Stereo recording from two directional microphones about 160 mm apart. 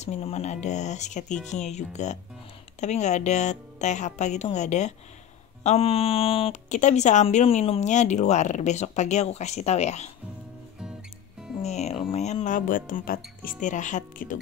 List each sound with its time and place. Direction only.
0.0 s speech: 40° left (ahead or behind)
6.7 s speech: 45° left (ahead or behind)
11.6 s speech: 45° left (ahead or behind)